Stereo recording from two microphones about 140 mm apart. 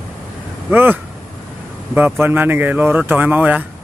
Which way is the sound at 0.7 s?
15° right (ahead or behind).